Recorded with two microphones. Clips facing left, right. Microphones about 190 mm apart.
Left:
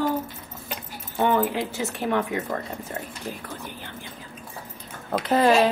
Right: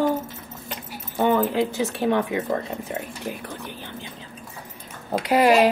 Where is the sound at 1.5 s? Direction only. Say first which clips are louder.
Right 5 dB; 15° right (ahead or behind).